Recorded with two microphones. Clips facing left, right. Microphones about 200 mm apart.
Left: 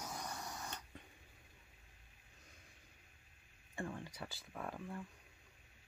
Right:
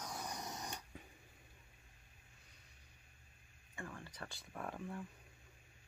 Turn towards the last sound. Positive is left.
turn(degrees=0)  # may be behind; listen again after turning